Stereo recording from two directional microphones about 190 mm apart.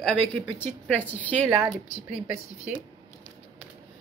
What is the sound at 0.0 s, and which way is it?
A woman's voice, 5° left (ahead or behind).